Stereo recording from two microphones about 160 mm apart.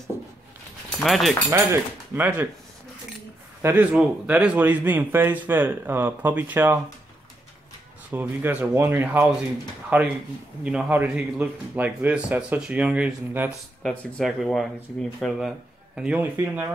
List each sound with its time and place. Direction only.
0.9 s speech: centre (ahead or behind)
1.5 s speech: 15° right (ahead or behind)
3.9 s speech: 5° right (ahead or behind)
8.1 s speech: 10° right (ahead or behind)
13.8 s speech: centre (ahead or behind)